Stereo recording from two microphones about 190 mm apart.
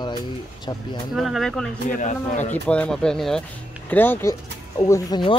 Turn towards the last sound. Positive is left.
turn(degrees=25)  # may be behind; listen again after turning